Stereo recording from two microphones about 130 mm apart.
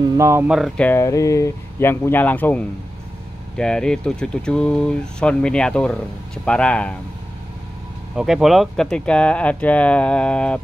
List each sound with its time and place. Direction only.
0.0 s speech: 20° right (ahead or behind)
0.5 s speech: centre (ahead or behind)
0.7 s speech: 15° left (ahead or behind)
8.2 s speech: 5° right (ahead or behind)